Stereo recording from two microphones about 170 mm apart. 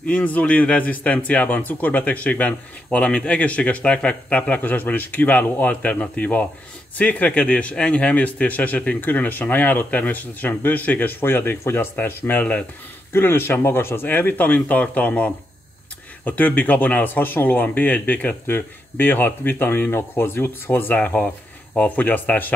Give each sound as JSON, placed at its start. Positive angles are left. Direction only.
{"t": 0.0, "sound": "a man's voice", "side_deg": 10}